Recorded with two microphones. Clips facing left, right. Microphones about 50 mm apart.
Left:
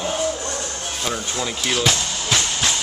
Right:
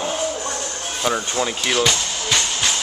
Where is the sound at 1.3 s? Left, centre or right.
Centre.